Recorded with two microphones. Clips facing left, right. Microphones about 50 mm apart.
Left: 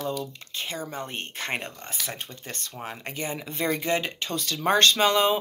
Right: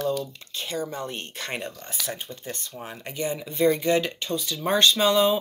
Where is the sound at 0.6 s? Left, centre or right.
Left.